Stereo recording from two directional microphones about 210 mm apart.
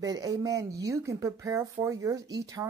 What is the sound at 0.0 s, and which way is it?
Speech, 15° right (ahead or behind).